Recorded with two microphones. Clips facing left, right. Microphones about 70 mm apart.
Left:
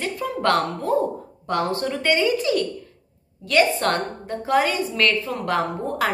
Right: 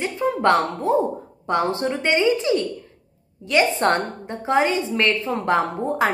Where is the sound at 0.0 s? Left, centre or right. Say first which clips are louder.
Right 4 dB; right.